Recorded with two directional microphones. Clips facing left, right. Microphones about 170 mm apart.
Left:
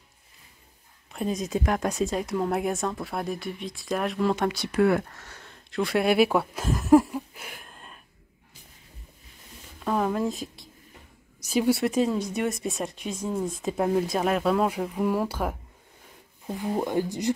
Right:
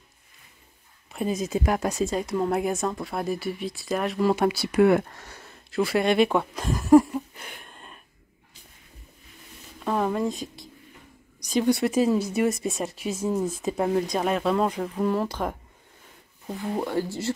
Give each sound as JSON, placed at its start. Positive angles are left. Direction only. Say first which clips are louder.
{"t": 1.1, "sound": "speech", "louder": "right 1 dB", "side_deg": -5}
{"t": 9.8, "sound": "speech", "louder": "right 1 dB", "side_deg": 0}